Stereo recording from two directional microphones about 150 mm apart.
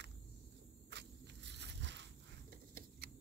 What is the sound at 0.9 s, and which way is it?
Walk, 90° right.